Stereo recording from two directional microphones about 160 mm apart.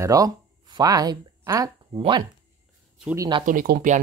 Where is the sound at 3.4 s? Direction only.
65° right (ahead or behind).